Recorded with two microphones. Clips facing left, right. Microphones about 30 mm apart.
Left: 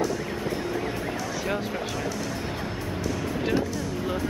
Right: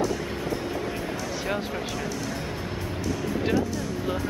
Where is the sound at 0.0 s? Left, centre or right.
Centre.